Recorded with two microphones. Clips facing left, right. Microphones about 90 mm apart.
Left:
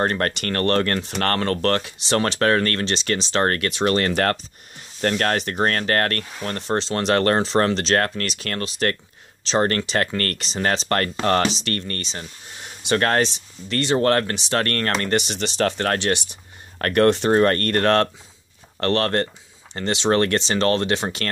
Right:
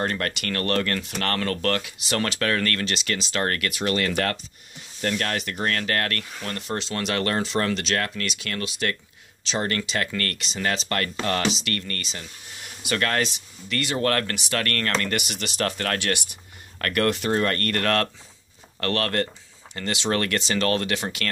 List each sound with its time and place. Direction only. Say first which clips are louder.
0.0 s speech: left 5 dB; 40° left (ahead or behind)